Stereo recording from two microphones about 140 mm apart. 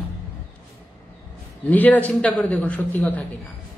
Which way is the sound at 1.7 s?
10° left (ahead or behind).